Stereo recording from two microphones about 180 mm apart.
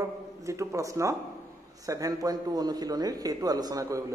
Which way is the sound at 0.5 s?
15° right (ahead or behind).